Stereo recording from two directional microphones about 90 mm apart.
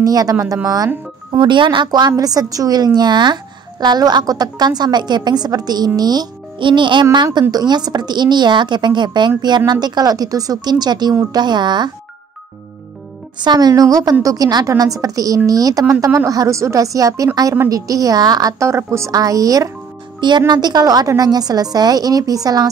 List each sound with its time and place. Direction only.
0.0 s a woman's voice: 45° right (ahead or behind)
1.4 s a woman's voice: 65° right (ahead or behind)
1.9 s a woman's voice: 50° right (ahead or behind)
7.5 s a woman's voice: 50° right (ahead or behind)
13.4 s a woman's voice: 50° right (ahead or behind)
20.2 s a woman's voice: 60° right (ahead or behind)